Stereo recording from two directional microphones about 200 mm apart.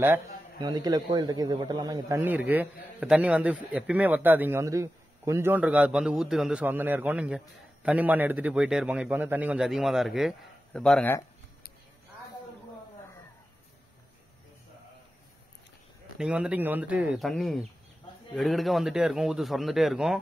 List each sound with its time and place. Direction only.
0.0 s a man's voice: 15° right (ahead or behind); by 11.1 s 5° left (ahead or behind)
16.2 s a man's voice: 5° right (ahead or behind)